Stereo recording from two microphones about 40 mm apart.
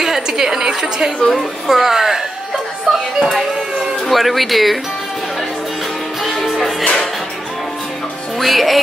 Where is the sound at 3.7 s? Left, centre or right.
Centre.